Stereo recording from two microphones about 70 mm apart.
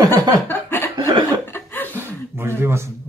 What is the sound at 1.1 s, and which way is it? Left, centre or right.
Chuckle, right.